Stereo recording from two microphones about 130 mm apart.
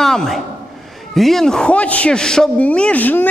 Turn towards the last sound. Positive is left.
turn(degrees=15)  # may be behind; listen again after turning